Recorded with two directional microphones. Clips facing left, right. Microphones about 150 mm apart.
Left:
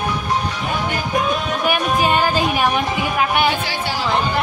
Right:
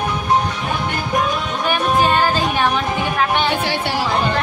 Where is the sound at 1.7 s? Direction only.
10° left (ahead or behind).